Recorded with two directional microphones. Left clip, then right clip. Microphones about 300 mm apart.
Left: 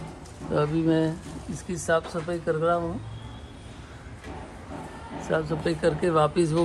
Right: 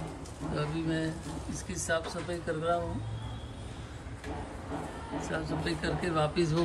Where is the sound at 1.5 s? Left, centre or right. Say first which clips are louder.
Left 8 dB; right.